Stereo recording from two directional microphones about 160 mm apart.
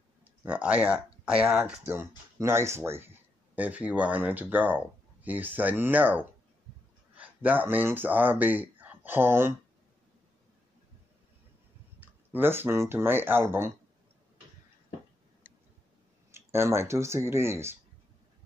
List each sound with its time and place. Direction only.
0.2 s speech: 10° right (ahead or behind)
12.0 s speech: 15° right (ahead or behind)
16.3 s speech: 15° right (ahead or behind)